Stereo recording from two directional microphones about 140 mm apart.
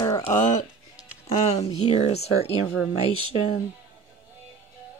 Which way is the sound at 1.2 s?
50° left (ahead or behind).